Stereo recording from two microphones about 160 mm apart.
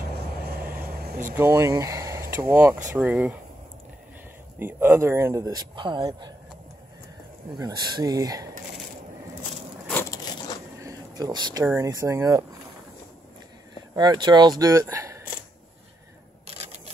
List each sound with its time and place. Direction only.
0.7 s vehicle: 70° right (ahead or behind)
1.3 s speech: 15° right (ahead or behind)
4.6 s speech: 15° right (ahead or behind)
7.5 s speech: 25° right (ahead or behind)
10.1 s crushing: 25° left (ahead or behind)
10.8 s a sound: 20° right (ahead or behind)
11.6 s speech: 20° right (ahead or behind)
13.9 s speech: 25° right (ahead or behind)
16.4 s typewriter: 40° right (ahead or behind)